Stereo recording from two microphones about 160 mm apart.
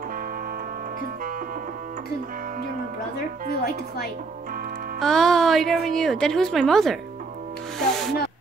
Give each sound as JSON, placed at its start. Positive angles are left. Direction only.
{"t": 3.2, "sound": "speech", "side_deg": 80}
{"t": 5.0, "sound": "a woman's voice", "side_deg": 0}
{"t": 7.8, "sound": "music", "side_deg": 5}